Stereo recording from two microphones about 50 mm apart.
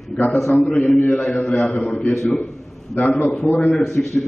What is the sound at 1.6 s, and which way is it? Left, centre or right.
Speech, left.